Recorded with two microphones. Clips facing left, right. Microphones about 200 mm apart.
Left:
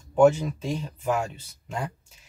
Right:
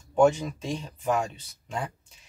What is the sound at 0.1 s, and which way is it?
Speech, 5° left (ahead or behind).